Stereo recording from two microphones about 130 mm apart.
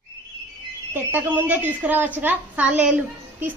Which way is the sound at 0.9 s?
15° right (ahead or behind).